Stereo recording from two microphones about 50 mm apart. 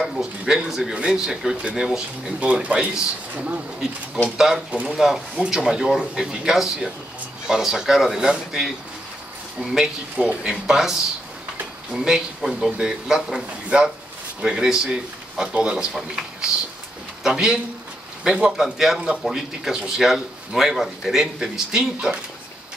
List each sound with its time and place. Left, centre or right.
0.1 s a man's voice: centre
2.4 s speech: right
4.6 s speech: right
4.9 s a man's voice: centre
10.1 s speech: right
10.5 s a man's voice: centre
15.9 s a man's voice: centre
18.6 s a man's voice: centre